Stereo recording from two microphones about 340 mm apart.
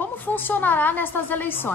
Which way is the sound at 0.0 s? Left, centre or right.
Centre.